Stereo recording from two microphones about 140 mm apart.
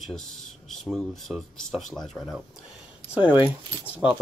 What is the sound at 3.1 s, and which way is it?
Speech, 10° right (ahead or behind).